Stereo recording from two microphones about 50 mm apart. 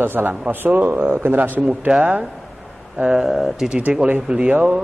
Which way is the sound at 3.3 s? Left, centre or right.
Centre.